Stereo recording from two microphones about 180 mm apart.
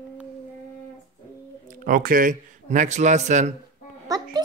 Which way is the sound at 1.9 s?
50° right (ahead or behind).